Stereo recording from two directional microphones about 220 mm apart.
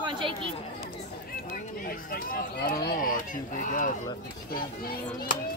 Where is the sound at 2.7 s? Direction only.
45° left (ahead or behind).